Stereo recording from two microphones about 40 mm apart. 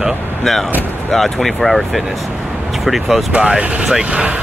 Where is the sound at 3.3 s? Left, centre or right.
Right.